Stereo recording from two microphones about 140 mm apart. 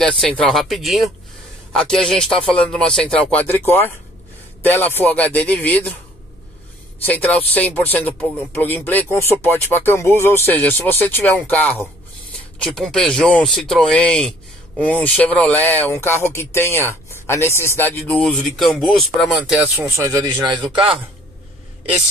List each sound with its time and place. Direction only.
0.0 s speech: 5° left (ahead or behind)
7.1 s speech: 10° left (ahead or behind); by 20.1 s 10° right (ahead or behind)
20.1 s a man's voice: 30° right (ahead or behind)